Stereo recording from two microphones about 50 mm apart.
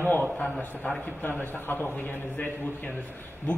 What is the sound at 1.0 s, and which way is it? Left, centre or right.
A man's voice, left.